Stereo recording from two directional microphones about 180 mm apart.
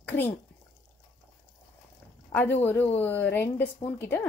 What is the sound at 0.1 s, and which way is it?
Speech, 40° left (ahead or behind).